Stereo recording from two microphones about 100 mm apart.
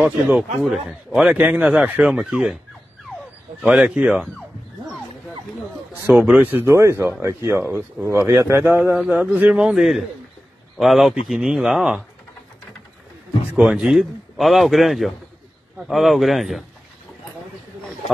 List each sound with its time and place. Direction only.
0.0 s speech: 10° right (ahead or behind)
3.6 s a man's voice: 10° right (ahead or behind)
6.2 s speech: 15° right (ahead or behind)
9.1 s a man's voice: 15° right (ahead or behind)
13.5 s a man's voice: 10° right (ahead or behind)